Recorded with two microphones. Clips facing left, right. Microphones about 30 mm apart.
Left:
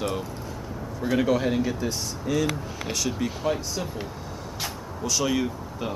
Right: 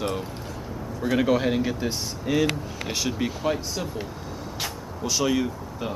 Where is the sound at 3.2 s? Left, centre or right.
Centre.